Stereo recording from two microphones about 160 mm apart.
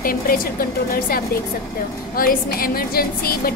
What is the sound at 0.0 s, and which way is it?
A woman's voice, 65° left (ahead or behind).